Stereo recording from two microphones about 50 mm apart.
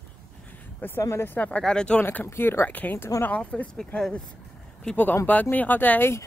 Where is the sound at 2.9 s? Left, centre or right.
Left.